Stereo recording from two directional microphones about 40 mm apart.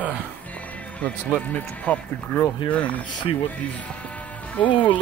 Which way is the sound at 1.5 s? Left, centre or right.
Left.